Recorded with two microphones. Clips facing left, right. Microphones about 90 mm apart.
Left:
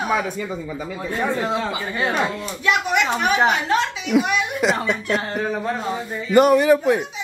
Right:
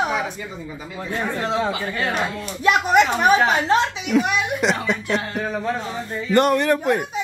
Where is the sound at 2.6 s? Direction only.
40° right (ahead or behind).